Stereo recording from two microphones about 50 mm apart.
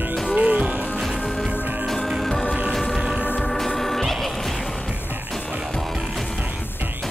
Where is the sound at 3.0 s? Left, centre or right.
Centre.